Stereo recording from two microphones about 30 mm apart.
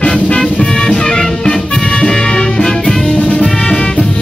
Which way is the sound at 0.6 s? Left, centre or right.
Left.